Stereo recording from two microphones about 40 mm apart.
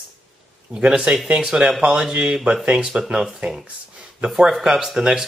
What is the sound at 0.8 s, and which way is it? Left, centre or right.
Speech, right.